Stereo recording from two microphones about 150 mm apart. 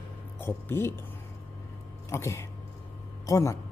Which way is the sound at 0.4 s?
15° left (ahead or behind).